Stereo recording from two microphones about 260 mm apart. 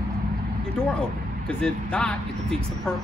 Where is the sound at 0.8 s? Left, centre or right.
Centre.